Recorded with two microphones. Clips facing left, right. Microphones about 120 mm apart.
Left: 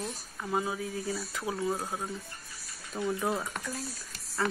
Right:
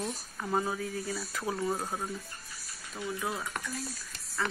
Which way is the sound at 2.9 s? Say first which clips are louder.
Left 5 dB; 35° left (ahead or behind).